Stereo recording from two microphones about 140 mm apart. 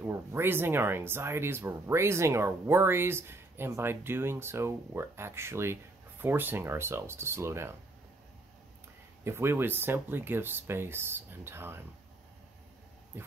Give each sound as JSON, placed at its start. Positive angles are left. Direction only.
{"t": 0.0, "sound": "speech", "side_deg": -15}
{"t": 9.2, "sound": "speech", "side_deg": -15}
{"t": 13.1, "sound": "dog", "side_deg": -15}